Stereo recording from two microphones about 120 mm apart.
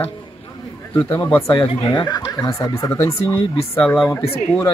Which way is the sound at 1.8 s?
35° left (ahead or behind).